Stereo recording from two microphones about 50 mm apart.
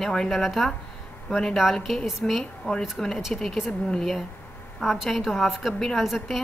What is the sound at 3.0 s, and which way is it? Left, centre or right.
A woman's voice, centre.